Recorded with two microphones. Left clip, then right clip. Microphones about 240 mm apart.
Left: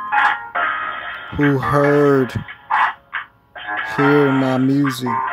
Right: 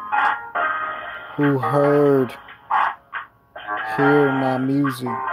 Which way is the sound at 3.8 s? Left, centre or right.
Centre.